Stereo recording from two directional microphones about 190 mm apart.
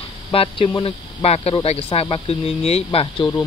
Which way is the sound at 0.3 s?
25° left (ahead or behind).